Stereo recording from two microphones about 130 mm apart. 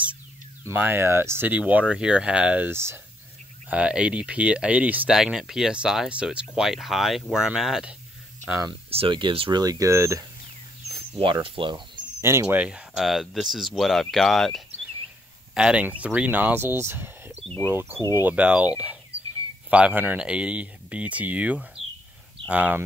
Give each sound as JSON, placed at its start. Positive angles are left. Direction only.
{"t": 0.7, "sound": "speech", "side_deg": -15}
{"t": 8.9, "sound": "speech", "side_deg": -40}
{"t": 9.6, "sound": "speech", "side_deg": -25}
{"t": 10.9, "sound": "speech", "side_deg": -40}
{"t": 12.2, "sound": "speech", "side_deg": -20}
{"t": 17.5, "sound": "speech", "side_deg": 10}
{"t": 17.7, "sound": "speech", "side_deg": -15}